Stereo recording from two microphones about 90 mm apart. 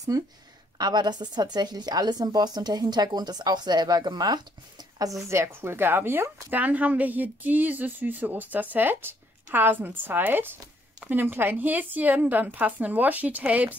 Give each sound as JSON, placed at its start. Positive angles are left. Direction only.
{"t": 0.1, "sound": "a woman's voice", "side_deg": -45}